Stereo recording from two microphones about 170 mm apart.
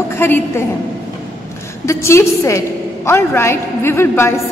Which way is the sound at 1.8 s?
15° left (ahead or behind).